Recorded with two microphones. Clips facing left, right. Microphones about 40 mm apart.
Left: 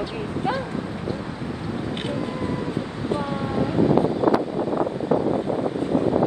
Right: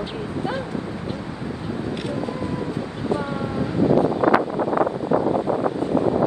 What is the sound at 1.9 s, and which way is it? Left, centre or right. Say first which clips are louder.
Vehicle: even; left.